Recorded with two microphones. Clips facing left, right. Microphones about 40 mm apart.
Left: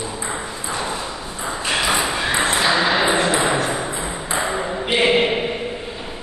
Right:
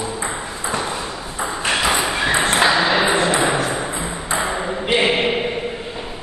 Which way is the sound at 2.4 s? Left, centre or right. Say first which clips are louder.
Right 1 dB; right.